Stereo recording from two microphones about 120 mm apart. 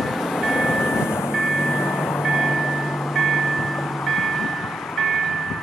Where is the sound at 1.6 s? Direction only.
15° left (ahead or behind).